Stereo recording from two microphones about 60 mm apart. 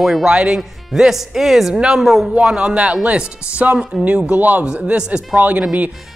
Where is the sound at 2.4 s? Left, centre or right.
Centre.